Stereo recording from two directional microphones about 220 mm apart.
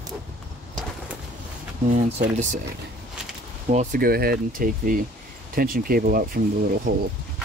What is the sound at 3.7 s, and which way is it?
Speech, 35° right (ahead or behind).